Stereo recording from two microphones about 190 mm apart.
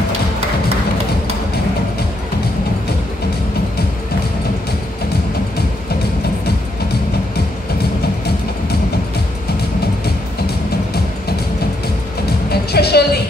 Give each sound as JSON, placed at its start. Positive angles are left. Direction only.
{"t": 12.4, "sound": "music", "side_deg": 55}